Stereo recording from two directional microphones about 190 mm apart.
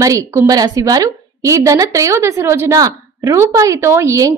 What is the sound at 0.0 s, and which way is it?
A woman's voice, 15° right (ahead or behind).